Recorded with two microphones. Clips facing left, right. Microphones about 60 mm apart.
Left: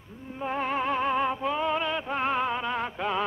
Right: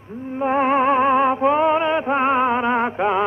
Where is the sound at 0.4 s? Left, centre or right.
Right.